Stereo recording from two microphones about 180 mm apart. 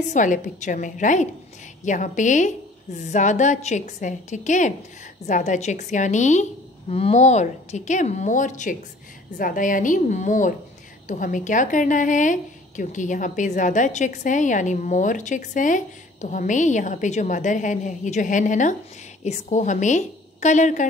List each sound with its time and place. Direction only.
0.1 s a woman's voice: 45° left (ahead or behind)